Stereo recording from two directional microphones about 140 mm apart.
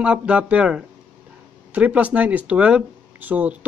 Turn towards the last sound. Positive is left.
turn(degrees=-10)  # may be behind; listen again after turning